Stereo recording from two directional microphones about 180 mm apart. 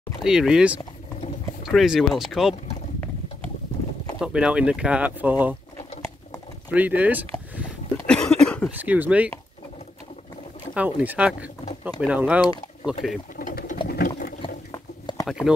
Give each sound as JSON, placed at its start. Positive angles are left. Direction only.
{"t": 0.2, "sound": "speech", "side_deg": -5}
{"t": 4.2, "sound": "speech", "side_deg": -5}
{"t": 6.7, "sound": "speech", "side_deg": -10}
{"t": 8.1, "sound": "a sound", "side_deg": 5}
{"t": 8.6, "sound": "speech", "side_deg": -10}
{"t": 10.7, "sound": "speech", "side_deg": -5}
{"t": 13.4, "sound": "bird", "side_deg": 45}
{"t": 13.8, "sound": "sewing machine", "side_deg": 55}
{"t": 14.7, "sound": "a sound", "side_deg": 20}
{"t": 15.2, "sound": "speech", "side_deg": -5}